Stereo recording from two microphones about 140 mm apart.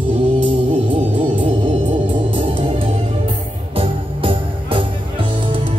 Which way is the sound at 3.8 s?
35° right (ahead or behind).